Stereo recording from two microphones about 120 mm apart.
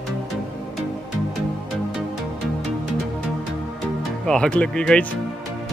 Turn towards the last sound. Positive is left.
turn(degrees=5)  # may be behind; listen again after turning